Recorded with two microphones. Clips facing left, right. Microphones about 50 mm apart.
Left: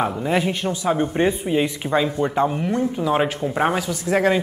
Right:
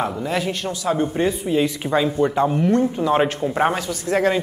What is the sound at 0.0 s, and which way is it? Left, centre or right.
A woman's voice, centre.